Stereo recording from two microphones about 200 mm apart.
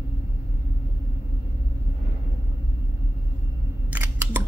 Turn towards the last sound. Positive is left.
turn(degrees=-10)  # may be behind; listen again after turning